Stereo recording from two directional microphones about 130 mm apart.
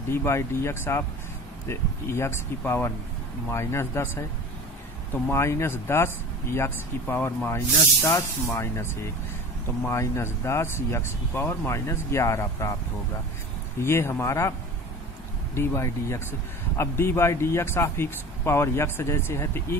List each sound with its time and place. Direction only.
0.1 s a man's voice: 20° left (ahead or behind)
9.8 s a man's voice: 20° left (ahead or behind)
13.8 s a man's voice: 20° left (ahead or behind)
15.5 s a man's voice: 20° left (ahead or behind)